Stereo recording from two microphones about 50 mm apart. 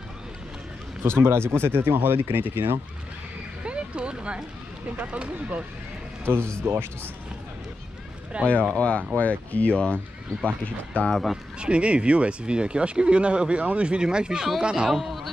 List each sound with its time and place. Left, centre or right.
1.0 s speech: right
3.6 s a sound: right
4.9 s speech: right
6.2 s a man's voice: right
8.3 s speech: right
8.7 s speech: left
11.6 s speech: right
14.9 s a man's voice: centre